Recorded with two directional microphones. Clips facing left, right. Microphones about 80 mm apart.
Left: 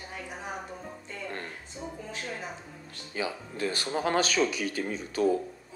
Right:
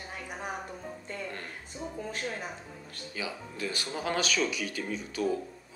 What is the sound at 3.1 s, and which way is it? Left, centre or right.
A man's voice, left.